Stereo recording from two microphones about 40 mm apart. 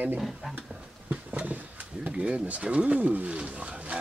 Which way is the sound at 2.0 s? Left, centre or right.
Right.